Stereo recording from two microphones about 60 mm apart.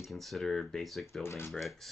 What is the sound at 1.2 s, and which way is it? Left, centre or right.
Speech, left.